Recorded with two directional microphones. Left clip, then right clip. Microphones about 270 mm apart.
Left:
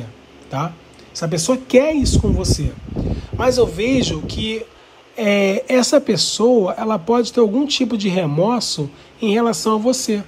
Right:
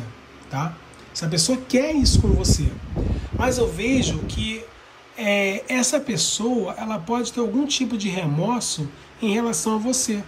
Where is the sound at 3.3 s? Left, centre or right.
Centre.